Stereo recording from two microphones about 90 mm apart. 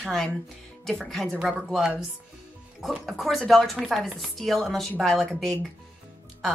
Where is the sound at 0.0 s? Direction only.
5° left (ahead or behind).